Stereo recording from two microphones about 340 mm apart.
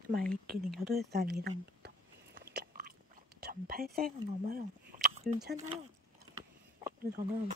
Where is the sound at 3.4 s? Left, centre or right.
Right.